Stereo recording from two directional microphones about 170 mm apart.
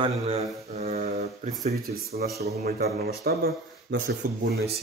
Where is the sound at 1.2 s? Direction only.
45° right (ahead or behind).